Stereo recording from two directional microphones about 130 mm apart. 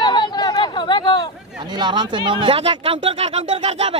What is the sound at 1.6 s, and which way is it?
Speech, 35° right (ahead or behind).